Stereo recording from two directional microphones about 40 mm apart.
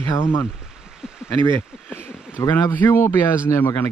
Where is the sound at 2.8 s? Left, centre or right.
Left.